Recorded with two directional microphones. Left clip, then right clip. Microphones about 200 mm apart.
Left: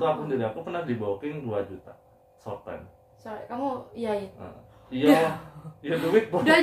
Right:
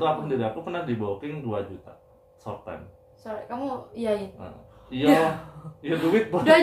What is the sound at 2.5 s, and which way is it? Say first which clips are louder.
Speech: even; 15° right (ahead or behind).